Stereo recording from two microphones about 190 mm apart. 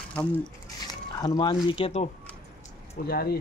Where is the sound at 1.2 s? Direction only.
20° left (ahead or behind).